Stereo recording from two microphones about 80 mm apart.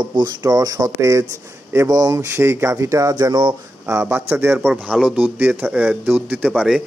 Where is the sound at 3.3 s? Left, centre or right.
Right.